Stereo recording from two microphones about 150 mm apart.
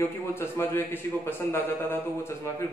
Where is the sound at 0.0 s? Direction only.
15° left (ahead or behind).